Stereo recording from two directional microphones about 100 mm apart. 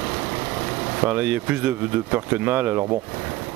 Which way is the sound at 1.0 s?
15° right (ahead or behind).